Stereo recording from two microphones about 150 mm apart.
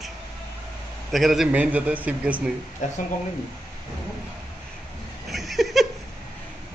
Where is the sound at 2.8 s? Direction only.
60° left (ahead or behind).